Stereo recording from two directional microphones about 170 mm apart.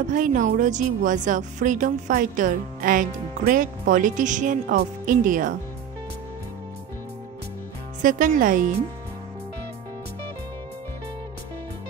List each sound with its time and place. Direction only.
0.1 s speech: 50° right (ahead or behind)
8.0 s speech: 50° right (ahead or behind)